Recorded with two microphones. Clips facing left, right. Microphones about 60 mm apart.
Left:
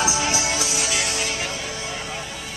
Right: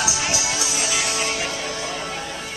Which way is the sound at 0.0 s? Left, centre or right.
Left.